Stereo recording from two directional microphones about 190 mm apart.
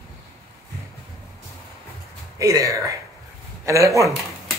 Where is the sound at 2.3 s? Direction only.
15° right (ahead or behind).